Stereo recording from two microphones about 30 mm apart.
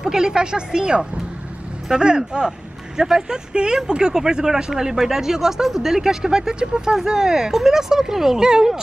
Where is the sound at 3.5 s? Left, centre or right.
Right.